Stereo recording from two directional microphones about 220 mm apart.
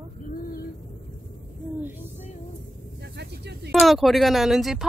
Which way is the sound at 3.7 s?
Centre (ahead or behind).